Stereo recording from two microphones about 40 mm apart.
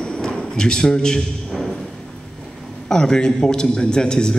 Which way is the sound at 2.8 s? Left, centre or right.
Centre.